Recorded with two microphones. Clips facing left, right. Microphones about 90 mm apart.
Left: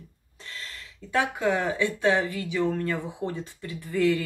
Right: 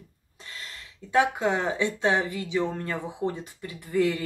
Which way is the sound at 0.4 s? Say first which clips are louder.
Left 1 dB; 20° right (ahead or behind).